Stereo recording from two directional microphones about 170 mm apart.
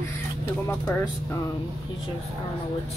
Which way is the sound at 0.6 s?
20° left (ahead or behind).